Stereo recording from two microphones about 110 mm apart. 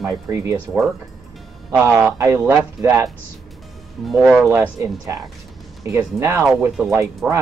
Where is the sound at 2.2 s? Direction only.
25° right (ahead or behind).